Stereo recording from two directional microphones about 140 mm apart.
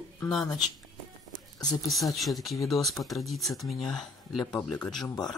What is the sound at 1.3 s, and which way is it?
Music, 30° left (ahead or behind).